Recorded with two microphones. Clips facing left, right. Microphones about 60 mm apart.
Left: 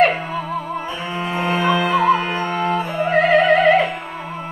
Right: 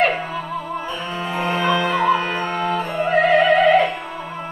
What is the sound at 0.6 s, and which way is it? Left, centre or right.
Music, left.